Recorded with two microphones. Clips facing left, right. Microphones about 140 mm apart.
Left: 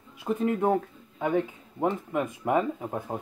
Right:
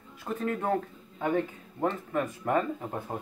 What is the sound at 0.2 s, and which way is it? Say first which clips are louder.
Speech: left 5 dB; 15° left (ahead or behind).